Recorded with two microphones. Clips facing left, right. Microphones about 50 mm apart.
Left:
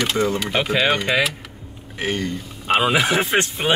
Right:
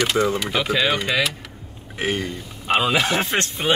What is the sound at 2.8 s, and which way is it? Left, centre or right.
Speech, centre.